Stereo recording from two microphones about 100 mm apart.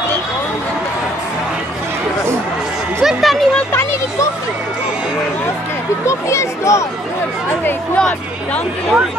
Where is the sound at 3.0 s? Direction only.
Centre (ahead or behind).